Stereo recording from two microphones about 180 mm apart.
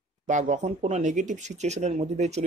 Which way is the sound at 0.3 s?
40° right (ahead or behind).